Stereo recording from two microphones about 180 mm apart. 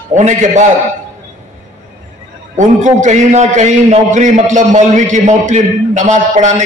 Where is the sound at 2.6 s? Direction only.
45° right (ahead or behind).